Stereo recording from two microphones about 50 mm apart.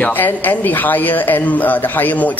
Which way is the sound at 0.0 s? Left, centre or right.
Left.